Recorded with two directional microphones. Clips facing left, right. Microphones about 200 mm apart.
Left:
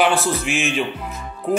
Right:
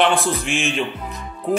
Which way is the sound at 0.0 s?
5° left (ahead or behind).